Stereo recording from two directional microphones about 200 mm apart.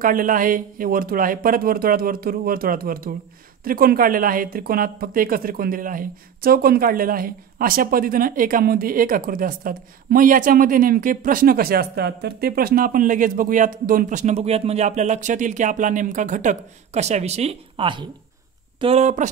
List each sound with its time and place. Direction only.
0.0 s a woman's voice: 45° right (ahead or behind)